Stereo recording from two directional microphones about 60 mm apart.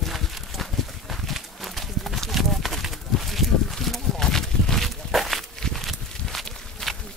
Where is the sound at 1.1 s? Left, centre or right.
Centre.